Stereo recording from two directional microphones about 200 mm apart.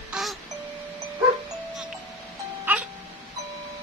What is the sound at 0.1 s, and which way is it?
Music, centre (ahead or behind).